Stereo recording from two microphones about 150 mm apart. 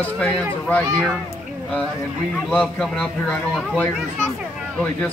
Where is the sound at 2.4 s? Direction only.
5° left (ahead or behind).